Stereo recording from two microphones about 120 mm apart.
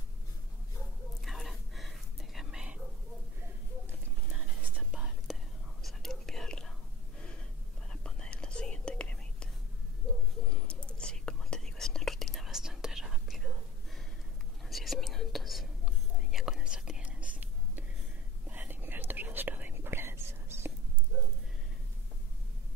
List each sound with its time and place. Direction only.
1.2 s whispering: centre (ahead or behind)
4.3 s whispering: 10° right (ahead or behind)
7.9 s whispering: 10° left (ahead or behind)
10.4 s a sound: 10° left (ahead or behind)
11.0 s whispering: 5° left (ahead or behind)
14.7 s whispering: centre (ahead or behind); by 20.7 s 20° right (ahead or behind)